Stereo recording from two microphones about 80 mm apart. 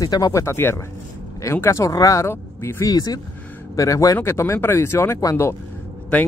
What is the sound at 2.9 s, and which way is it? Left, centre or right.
Speech, left.